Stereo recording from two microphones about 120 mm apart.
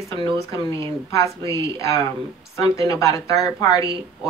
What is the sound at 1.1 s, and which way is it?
Speech, 25° left (ahead or behind).